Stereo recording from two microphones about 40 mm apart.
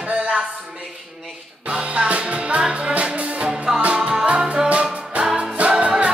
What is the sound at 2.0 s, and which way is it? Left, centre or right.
Music, right.